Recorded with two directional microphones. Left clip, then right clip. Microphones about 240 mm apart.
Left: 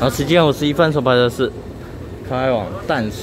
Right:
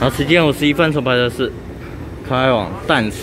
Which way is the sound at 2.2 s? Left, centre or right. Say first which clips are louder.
Right 3 dB; centre.